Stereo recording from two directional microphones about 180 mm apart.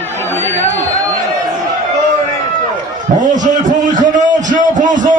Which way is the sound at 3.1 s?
45° right (ahead or behind).